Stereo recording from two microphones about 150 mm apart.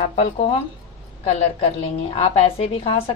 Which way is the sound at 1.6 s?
40° left (ahead or behind).